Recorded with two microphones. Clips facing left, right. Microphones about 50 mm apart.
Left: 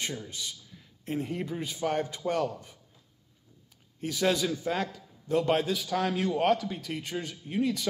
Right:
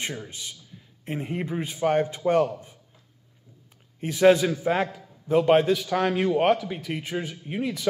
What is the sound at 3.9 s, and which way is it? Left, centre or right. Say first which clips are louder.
Speech: right 9 dB; right.